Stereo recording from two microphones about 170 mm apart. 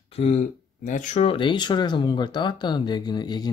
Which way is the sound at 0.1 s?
35° left (ahead or behind).